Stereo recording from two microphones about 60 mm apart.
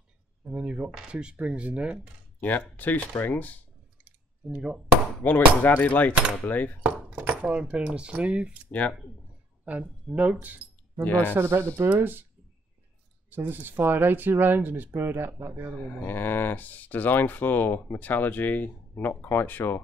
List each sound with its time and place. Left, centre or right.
0.5 s speech: centre
2.4 s speech: left
4.5 s speech: centre
5.2 s speech: left
6.8 s speech: right
9.7 s speech: right
11.1 s speech: left
11.3 s speech: right
12.0 s speech: right
13.3 s speech: right
15.8 s speech: left